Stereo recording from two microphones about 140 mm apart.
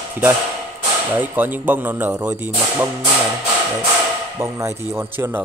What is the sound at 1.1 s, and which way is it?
Speech, 15° right (ahead or behind).